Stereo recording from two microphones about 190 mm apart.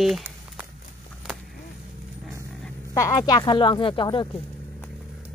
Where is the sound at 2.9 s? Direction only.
15° left (ahead or behind).